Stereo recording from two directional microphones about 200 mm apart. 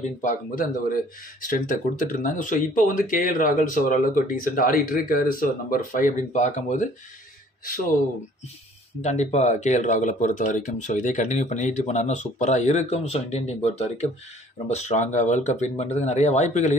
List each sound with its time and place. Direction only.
0.2 s speech: 40° left (ahead or behind)
9.0 s speech: 35° left (ahead or behind)